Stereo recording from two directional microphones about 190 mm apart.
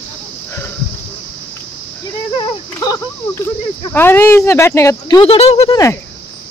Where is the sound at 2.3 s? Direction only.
20° left (ahead or behind).